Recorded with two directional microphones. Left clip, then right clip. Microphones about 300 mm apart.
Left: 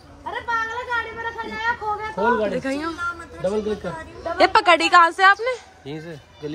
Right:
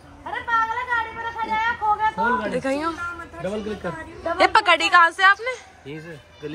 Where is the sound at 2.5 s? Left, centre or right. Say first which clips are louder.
Right 2 dB; centre.